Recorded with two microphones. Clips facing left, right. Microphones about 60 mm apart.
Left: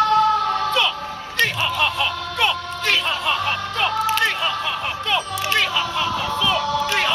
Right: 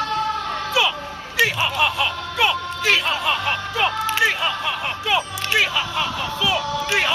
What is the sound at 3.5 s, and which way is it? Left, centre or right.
Music, centre.